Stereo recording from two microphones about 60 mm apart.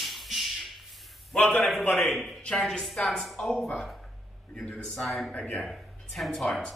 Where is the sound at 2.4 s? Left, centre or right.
Centre.